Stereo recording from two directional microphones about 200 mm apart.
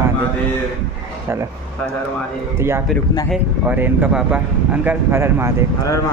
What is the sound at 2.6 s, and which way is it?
Speech, 10° right (ahead or behind).